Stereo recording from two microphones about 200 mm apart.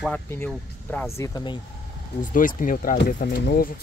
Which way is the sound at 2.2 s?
40° left (ahead or behind).